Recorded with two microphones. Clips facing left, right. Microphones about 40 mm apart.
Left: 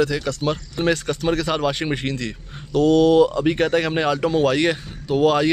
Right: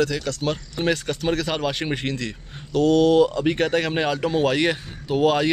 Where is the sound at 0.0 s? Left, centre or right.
Centre.